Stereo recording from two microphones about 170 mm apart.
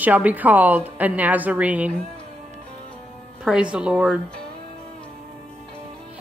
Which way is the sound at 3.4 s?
5° right (ahead or behind).